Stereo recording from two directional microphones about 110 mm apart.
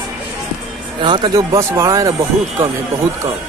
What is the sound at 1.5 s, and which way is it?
Speech, 25° right (ahead or behind).